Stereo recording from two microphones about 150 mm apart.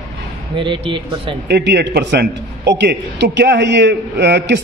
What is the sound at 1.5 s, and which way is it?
A man's voice, 90° right.